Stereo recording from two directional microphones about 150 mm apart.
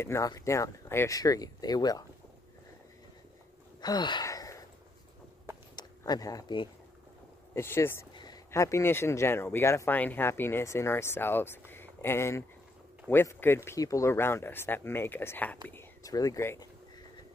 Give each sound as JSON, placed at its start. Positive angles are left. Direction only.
{"t": 0.0, "sound": "speech", "side_deg": 20}
{"t": 3.8, "sound": "a sound", "side_deg": 30}
{"t": 5.8, "sound": "speech", "side_deg": 25}
{"t": 7.5, "sound": "speech", "side_deg": 15}
{"t": 8.1, "sound": "a sound", "side_deg": 30}
{"t": 8.5, "sound": "speech", "side_deg": 20}